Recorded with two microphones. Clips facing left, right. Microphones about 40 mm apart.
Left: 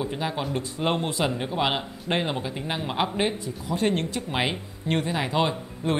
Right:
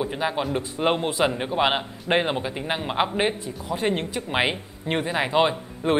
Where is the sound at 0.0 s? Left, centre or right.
Centre.